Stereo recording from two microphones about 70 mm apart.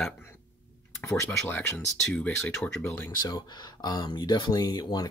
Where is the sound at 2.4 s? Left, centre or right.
Centre.